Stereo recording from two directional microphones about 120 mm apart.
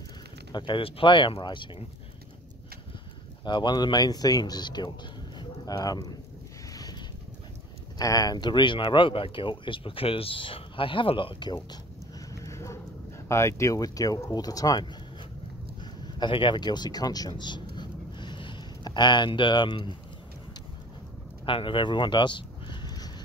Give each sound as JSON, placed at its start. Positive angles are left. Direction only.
{"t": 0.5, "sound": "speech", "side_deg": 40}
{"t": 3.4, "sound": "speech", "side_deg": 40}
{"t": 5.4, "sound": "a sound", "side_deg": 30}
{"t": 6.7, "sound": "vehicle", "side_deg": 30}
{"t": 8.0, "sound": "speech", "side_deg": 30}
{"t": 12.3, "sound": "clip-clop", "side_deg": 25}
{"t": 13.3, "sound": "speech", "side_deg": 25}
{"t": 15.8, "sound": "a sound", "side_deg": 40}
{"t": 21.5, "sound": "a sound", "side_deg": 45}